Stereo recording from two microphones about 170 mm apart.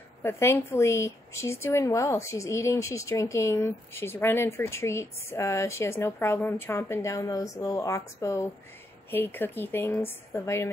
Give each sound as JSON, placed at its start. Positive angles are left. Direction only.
{"t": 0.2, "sound": "a woman's voice", "side_deg": 15}